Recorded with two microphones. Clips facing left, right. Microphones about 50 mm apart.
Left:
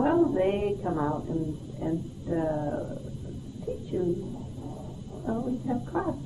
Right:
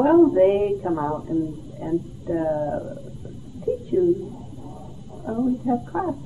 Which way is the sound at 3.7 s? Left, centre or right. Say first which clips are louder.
Right 10 dB; right.